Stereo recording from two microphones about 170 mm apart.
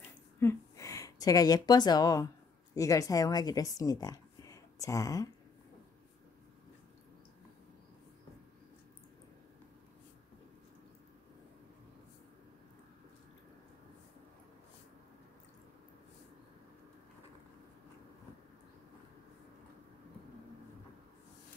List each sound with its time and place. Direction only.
0.4 s speech: 15° left (ahead or behind)